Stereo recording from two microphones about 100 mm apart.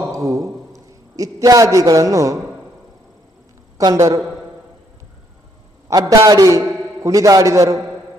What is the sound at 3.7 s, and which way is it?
Speech, 35° right (ahead or behind).